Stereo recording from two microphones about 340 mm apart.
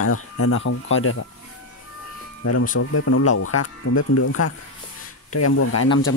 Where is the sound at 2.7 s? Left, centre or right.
Left.